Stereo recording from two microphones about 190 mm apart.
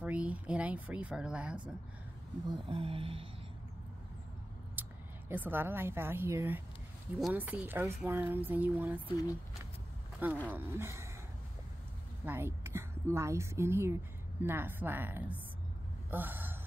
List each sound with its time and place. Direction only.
0.0 s a woman's voice: 5° right (ahead or behind)
2.4 s a sound: 25° right (ahead or behind)
4.8 s a sound: 10° right (ahead or behind)
5.3 s a woman's voice: 10° right (ahead or behind)
10.2 s a woman's voice: 10° right (ahead or behind)
12.3 s a woman's voice: 10° right (ahead or behind)